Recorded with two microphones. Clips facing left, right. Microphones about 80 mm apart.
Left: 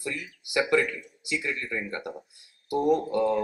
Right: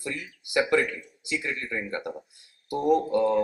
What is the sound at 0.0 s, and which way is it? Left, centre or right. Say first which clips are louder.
Speech: even; right.